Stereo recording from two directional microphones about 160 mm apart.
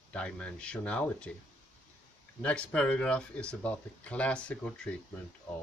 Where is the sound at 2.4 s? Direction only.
5° left (ahead or behind).